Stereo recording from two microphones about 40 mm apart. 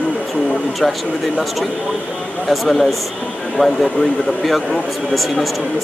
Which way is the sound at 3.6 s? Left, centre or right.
Left.